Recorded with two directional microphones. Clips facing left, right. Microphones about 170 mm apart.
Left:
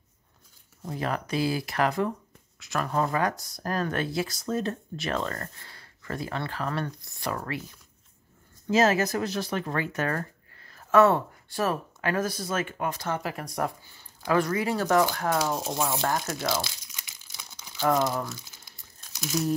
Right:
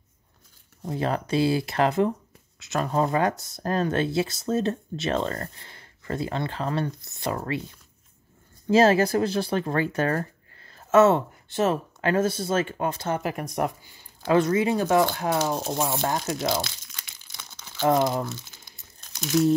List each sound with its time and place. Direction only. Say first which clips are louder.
0.8 s speech: right 4 dB; 25° right (ahead or behind)
16.8 s crumpling: right 1 dB; 10° left (ahead or behind)
17.8 s speech: right 3 dB; 30° right (ahead or behind)